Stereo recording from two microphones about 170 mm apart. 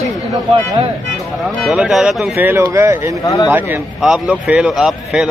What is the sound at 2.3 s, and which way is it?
Speech, 15° right (ahead or behind).